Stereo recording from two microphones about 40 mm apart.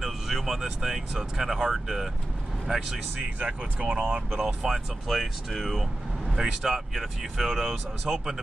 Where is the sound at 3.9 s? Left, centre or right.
Right.